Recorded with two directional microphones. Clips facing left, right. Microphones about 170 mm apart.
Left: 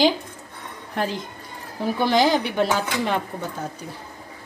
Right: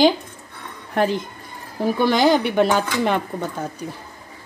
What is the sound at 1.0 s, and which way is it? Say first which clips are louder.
Speech: right 6 dB; 55° right (ahead or behind).